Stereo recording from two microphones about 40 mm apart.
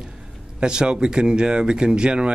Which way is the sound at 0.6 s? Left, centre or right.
Right.